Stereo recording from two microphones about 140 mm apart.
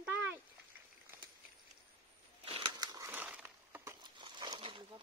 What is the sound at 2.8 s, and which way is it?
Crushing, 25° right (ahead or behind).